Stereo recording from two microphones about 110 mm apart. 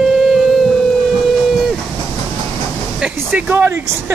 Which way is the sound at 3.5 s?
25° right (ahead or behind).